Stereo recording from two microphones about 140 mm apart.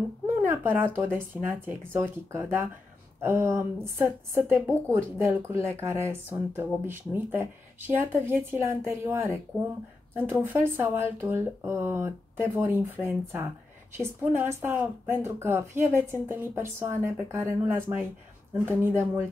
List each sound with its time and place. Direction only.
0.5 s speech: 15° right (ahead or behind)